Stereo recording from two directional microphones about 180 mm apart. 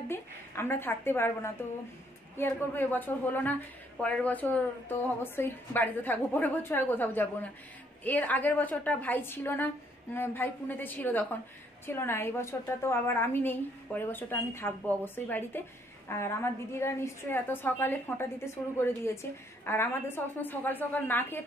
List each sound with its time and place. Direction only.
0.1 s a woman's voice: 15° left (ahead or behind)